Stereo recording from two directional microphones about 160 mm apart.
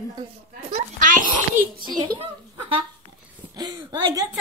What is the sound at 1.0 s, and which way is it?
Speech, 55° right (ahead or behind).